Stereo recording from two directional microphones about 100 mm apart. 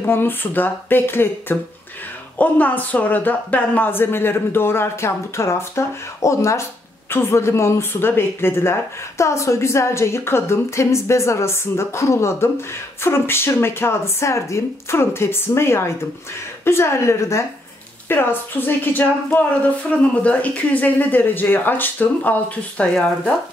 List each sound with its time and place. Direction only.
0.0 s a woman's voice: 20° left (ahead or behind)